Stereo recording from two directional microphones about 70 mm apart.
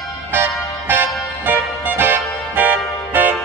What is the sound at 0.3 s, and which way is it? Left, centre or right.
Music, right.